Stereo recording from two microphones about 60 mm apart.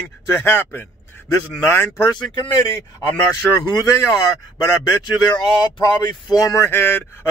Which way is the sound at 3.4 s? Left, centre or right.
Centre.